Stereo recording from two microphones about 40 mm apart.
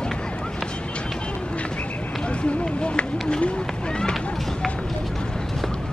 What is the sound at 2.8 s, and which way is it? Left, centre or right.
Speech, left.